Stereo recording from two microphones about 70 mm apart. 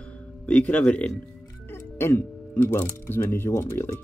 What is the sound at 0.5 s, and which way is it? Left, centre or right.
Speech, left.